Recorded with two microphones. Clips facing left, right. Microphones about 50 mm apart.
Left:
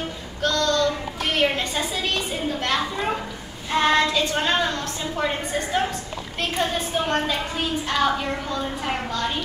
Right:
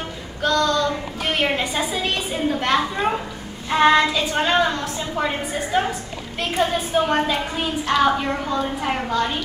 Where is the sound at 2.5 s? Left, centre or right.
Right.